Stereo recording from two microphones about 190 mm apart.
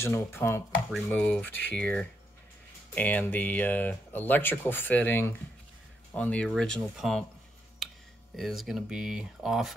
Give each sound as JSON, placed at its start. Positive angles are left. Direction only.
{"t": 0.0, "sound": "speech", "side_deg": 10}
{"t": 0.8, "sound": "speech", "side_deg": 0}
{"t": 7.8, "sound": "a sound", "side_deg": 0}
{"t": 8.4, "sound": "speech", "side_deg": 0}